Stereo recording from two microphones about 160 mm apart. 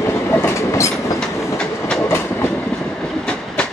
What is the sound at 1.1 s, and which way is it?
Train, 5° left (ahead or behind).